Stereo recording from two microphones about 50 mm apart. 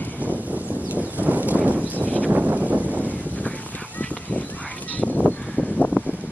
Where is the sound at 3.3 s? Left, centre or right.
Left.